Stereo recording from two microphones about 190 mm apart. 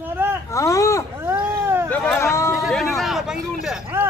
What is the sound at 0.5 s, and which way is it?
Speech, 15° left (ahead or behind).